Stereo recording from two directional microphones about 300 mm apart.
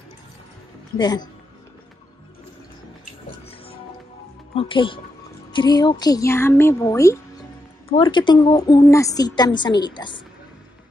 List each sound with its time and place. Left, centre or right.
0.9 s a woman's voice: centre
4.6 s a woman's voice: centre